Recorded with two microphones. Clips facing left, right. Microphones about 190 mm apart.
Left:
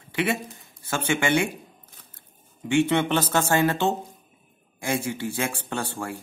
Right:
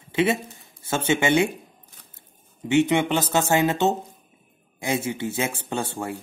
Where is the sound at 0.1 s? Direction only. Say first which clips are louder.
Right 4 dB; 20° right (ahead or behind).